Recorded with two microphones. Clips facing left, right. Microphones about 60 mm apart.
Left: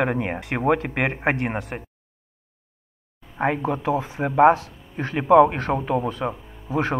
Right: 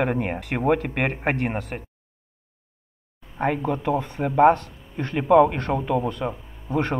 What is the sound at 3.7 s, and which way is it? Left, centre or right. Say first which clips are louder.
Speech: even; centre.